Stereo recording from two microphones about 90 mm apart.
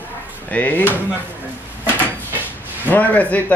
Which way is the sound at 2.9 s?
20° left (ahead or behind).